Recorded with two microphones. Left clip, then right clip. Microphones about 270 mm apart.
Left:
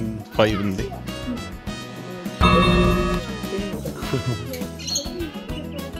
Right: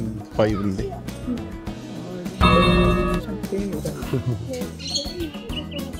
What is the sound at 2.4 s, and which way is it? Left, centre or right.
Music, centre.